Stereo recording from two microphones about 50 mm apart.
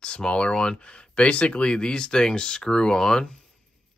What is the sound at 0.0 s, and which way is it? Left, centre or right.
Speech, centre.